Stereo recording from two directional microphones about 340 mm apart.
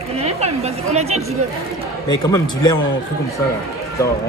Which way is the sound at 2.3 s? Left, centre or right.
Centre.